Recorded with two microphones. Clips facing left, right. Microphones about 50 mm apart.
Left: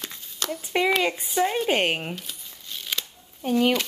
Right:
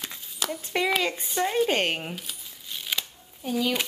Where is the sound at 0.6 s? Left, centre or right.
Centre.